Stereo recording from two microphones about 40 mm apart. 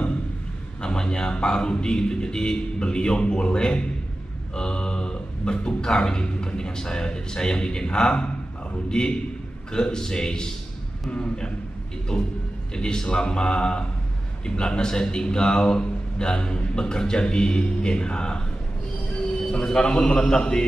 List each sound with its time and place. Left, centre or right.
0.8 s a man's voice: left
19.4 s speech: centre